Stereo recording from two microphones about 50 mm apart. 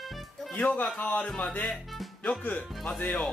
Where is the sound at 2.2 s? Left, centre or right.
Left.